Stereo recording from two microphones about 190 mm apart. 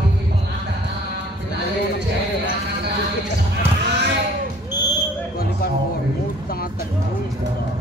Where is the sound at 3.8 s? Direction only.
65° right (ahead or behind).